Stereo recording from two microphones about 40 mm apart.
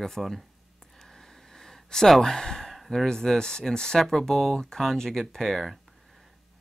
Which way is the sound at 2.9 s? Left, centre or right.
Centre.